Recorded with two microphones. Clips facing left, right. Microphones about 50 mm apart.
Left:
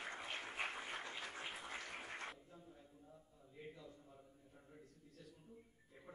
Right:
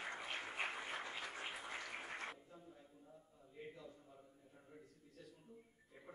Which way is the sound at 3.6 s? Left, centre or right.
Centre.